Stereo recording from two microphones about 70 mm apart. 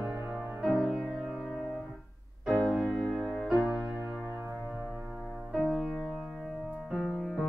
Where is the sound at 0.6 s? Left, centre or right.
Centre.